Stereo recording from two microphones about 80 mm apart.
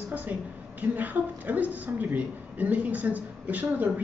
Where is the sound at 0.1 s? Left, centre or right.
Centre.